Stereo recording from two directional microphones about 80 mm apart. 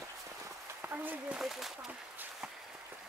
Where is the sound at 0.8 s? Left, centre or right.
Right.